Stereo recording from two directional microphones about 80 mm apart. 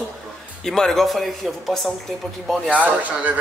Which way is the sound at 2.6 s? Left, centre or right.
Centre.